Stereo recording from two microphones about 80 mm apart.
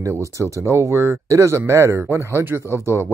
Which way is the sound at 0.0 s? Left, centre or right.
Right.